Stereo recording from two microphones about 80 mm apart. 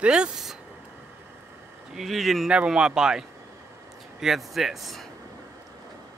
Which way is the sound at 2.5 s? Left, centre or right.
Centre.